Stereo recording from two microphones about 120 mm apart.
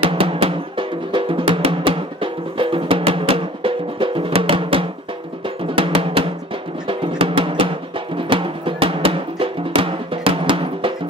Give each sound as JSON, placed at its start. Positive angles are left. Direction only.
{"t": 0.0, "sound": "music", "side_deg": -50}
{"t": 5.8, "sound": "drum", "side_deg": -50}
{"t": 6.9, "sound": "music", "side_deg": -50}